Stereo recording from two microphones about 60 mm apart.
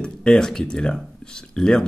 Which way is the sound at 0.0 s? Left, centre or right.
Centre.